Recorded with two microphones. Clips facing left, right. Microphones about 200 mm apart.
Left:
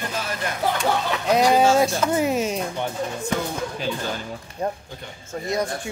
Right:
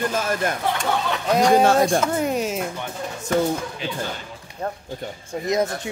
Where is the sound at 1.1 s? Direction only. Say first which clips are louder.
Right 2 dB; centre (ahead or behind).